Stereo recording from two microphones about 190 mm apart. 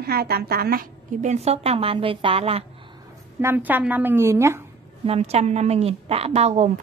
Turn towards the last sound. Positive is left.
turn(degrees=-35)  # may be behind; listen again after turning